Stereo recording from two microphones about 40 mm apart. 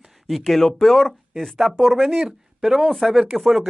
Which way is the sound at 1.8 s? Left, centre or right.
Centre.